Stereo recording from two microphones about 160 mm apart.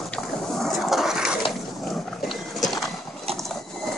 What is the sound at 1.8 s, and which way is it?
Dog, centre (ahead or behind).